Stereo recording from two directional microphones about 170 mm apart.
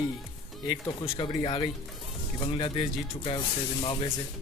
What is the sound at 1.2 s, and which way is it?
Speech, 25° left (ahead or behind).